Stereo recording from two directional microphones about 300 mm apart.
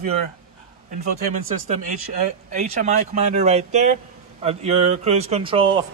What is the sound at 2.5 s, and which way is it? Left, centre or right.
A man's voice, right.